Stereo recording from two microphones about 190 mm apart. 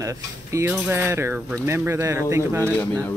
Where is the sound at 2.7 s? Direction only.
10° left (ahead or behind).